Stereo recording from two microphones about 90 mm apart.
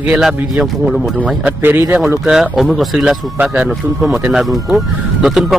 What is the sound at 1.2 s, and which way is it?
A man's voice, 15° right (ahead or behind).